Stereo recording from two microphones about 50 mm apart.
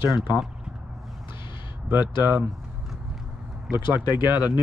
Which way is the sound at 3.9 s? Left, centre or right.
Right.